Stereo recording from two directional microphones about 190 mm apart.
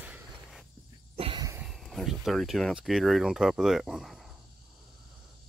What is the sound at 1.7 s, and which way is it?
Speech, centre (ahead or behind).